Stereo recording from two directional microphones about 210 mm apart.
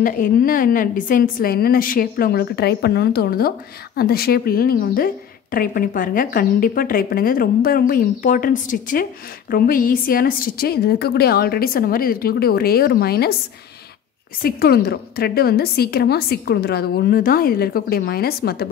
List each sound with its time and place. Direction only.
0.0 s a woman's voice: 40° left (ahead or behind)
14.4 s a woman's voice: 45° left (ahead or behind)